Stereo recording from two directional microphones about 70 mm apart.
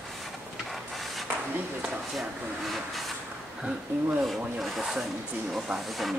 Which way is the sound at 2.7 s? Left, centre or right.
Centre.